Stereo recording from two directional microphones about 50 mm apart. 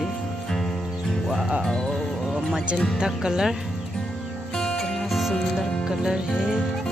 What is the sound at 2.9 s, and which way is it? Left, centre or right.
Music, centre.